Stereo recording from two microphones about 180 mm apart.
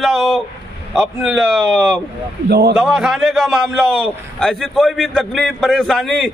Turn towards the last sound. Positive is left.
turn(degrees=0)  # may be behind; listen again after turning